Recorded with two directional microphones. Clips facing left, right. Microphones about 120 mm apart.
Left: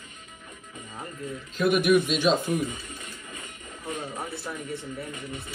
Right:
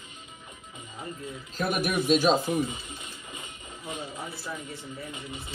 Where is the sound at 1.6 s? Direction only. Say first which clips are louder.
Left 7 dB; 40° right (ahead or behind).